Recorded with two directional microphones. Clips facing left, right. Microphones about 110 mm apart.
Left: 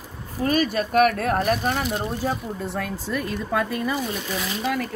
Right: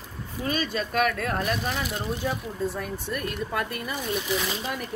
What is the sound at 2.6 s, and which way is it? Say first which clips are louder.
Speech: right 2 dB; 75° left (ahead or behind).